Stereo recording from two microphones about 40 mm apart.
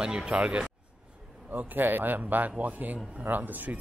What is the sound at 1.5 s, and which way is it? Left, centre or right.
Speech, right.